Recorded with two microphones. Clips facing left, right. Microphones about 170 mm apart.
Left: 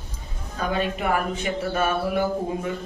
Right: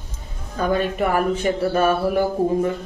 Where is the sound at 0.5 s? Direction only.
45° right (ahead or behind).